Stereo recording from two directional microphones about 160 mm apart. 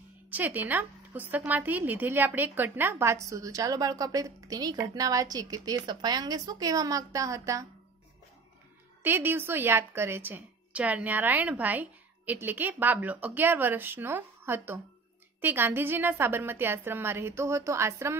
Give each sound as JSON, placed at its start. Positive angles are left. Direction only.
{"t": 0.3, "sound": "a woman's voice", "side_deg": -10}
{"t": 9.0, "sound": "a woman's voice", "side_deg": -15}